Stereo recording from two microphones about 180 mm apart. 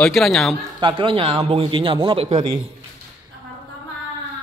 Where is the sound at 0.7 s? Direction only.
25° right (ahead or behind).